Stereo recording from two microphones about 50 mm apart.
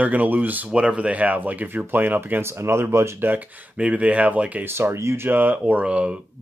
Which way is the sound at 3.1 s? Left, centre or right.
Right.